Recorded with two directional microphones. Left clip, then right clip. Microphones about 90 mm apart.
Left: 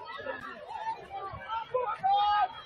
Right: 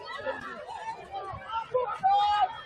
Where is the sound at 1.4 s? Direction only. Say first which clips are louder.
Right 2 dB; 40° left (ahead or behind).